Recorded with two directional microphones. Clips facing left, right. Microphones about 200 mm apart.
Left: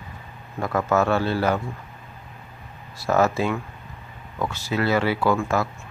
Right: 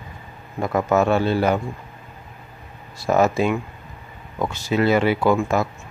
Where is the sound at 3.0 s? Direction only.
15° right (ahead or behind).